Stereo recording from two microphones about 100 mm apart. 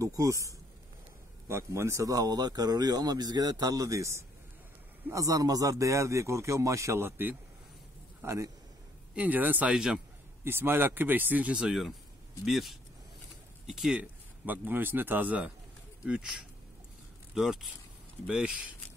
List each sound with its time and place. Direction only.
0.0 s a man's voice: 35° right (ahead or behind)
9.1 s speech: 15° right (ahead or behind)
10.4 s speech: 20° right (ahead or behind); by 14.0 s 5° right (ahead or behind)
14.4 s speech: 20° right (ahead or behind)